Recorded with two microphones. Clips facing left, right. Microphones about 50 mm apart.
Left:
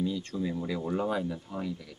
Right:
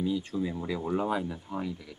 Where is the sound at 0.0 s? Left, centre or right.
Centre.